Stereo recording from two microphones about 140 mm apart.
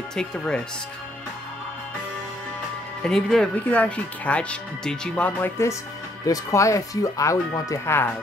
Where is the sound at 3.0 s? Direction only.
5° left (ahead or behind); by 8.1 s 20° left (ahead or behind).